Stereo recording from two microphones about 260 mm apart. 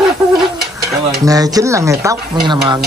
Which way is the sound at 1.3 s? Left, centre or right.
Centre.